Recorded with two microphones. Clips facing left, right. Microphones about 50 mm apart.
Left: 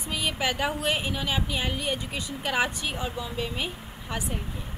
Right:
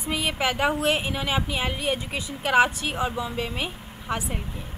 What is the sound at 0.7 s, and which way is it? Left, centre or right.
Speech, centre.